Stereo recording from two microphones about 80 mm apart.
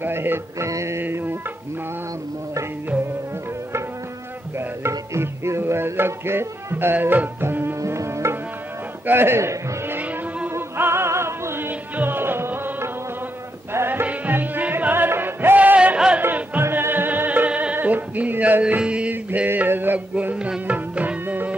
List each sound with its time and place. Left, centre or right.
0.0 s music: right
1.0 s music: right
4.6 s music: right
7.8 s tabla: right
9.0 s a man's voice: right
9.9 s vehicle: centre
10.5 s music: right
17.7 s male singing: right